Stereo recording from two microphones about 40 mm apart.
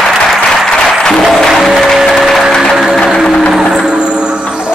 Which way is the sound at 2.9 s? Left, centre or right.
Centre.